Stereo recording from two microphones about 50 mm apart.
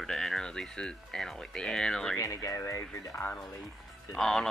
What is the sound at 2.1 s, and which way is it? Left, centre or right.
Speech, left.